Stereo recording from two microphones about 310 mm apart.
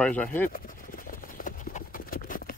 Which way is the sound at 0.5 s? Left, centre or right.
Left.